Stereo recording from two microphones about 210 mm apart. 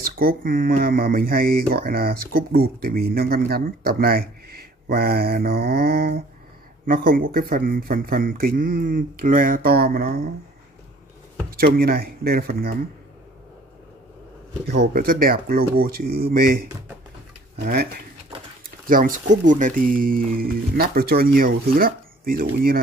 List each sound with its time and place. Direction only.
0.0 s speech: 45° right (ahead or behind)
11.5 s speech: 45° right (ahead or behind)
14.7 s speech: 50° right (ahead or behind)
18.9 s speech: 40° right (ahead or behind)